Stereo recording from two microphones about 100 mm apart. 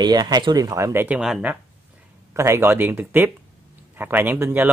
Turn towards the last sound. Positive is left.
turn(degrees=-20)  # may be behind; listen again after turning